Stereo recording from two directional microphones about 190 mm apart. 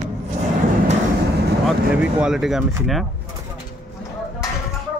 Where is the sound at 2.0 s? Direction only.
5° right (ahead or behind).